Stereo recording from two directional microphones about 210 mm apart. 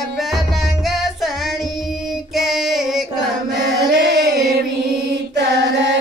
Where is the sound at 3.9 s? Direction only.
55° right (ahead or behind).